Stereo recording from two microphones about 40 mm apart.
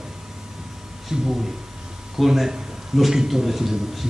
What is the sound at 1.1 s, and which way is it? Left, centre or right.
Speech, centre.